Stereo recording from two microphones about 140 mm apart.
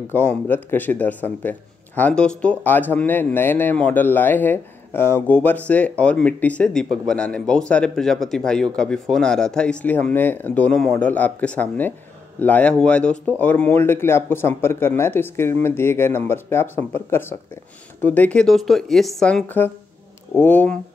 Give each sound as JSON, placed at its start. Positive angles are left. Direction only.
{"t": 0.1, "sound": "speech", "side_deg": 10}
{"t": 19.4, "sound": "speech", "side_deg": 15}